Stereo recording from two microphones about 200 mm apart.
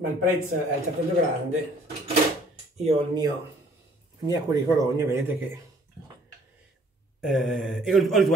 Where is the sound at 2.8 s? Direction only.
25° right (ahead or behind).